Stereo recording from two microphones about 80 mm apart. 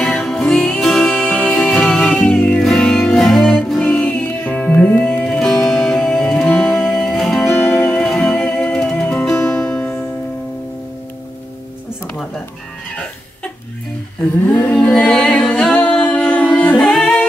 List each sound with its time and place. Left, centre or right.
0.0 s music: centre
2.6 s music: centre; by 5.2 s left
5.2 s music: centre
7.3 s music: left
7.8 s music: centre
14.5 s a capella: centre
16.8 s music: centre